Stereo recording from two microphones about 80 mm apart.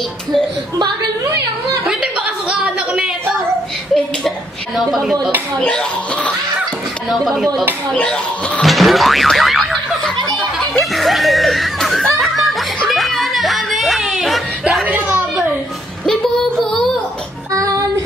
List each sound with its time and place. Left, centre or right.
1.9 s chuckle: centre
4.7 s speech: centre
5.6 s speech: centre
7.1 s speech: centre
7.9 s speech: centre
8.6 s boing: centre
10.3 s giggle: centre
12.2 s music: centre
14.9 s a sound: right
16.1 s music: centre
17.5 s child singing: right